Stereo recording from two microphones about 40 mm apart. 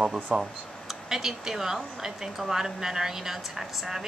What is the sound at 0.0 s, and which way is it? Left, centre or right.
A woman's voice, centre.